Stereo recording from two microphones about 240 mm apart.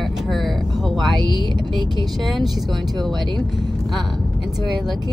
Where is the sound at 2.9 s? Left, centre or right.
Centre.